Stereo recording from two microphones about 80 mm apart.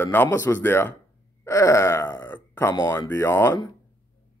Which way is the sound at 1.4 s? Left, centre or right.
Left.